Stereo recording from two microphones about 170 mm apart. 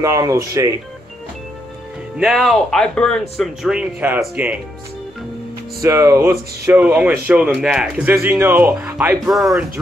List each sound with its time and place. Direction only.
0.0 s speech: 15° right (ahead or behind)
2.1 s speech: centre (ahead or behind)
5.8 s speech: 15° right (ahead or behind)
9.3 s speech: centre (ahead or behind)